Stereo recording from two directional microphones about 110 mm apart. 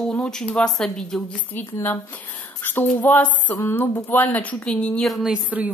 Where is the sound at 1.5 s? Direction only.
20° left (ahead or behind).